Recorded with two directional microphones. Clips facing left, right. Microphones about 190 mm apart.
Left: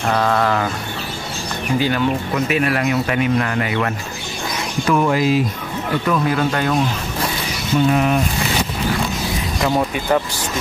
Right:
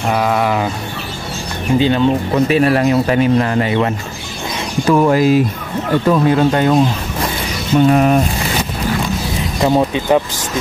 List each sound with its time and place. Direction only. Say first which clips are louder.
0.1 s a sound: right 2 dB; 10° right (ahead or behind)
1.8 s speech: right 6 dB; 25° right (ahead or behind)
5.1 s speech: right 5 dB; 45° right (ahead or behind)
6.0 s speech: right 6 dB; 30° right (ahead or behind)
7.9 s speech: right 6 dB; 45° right (ahead or behind)
9.6 s speech: right 6 dB; 20° right (ahead or behind)